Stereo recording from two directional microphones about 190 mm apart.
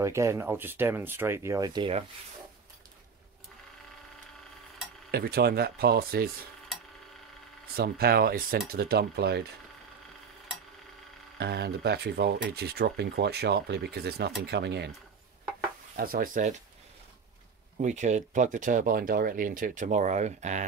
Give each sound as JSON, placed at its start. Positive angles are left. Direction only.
{"t": 0.0, "sound": "speech", "side_deg": -15}
{"t": 5.1, "sound": "speech", "side_deg": -55}
{"t": 7.7, "sound": "speech", "side_deg": -55}
{"t": 11.3, "sound": "speech", "side_deg": -60}
{"t": 16.0, "sound": "speech", "side_deg": -50}
{"t": 17.7, "sound": "speech", "side_deg": -40}